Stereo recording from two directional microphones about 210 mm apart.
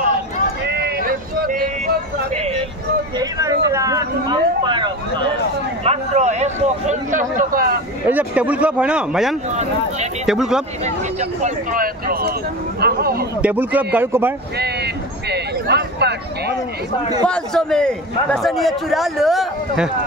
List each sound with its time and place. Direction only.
0.7 s vehicle: 50° right (ahead or behind)
3.2 s a sound: 15° right (ahead or behind)
5.9 s speech: 35° right (ahead or behind)
8.1 s a man's voice: 5° right (ahead or behind)
11.1 s speech: 35° right (ahead or behind)
13.4 s speech: 10° right (ahead or behind)
15.2 s a sound: 50° right (ahead or behind)
17.3 s a man's voice: 5° left (ahead or behind)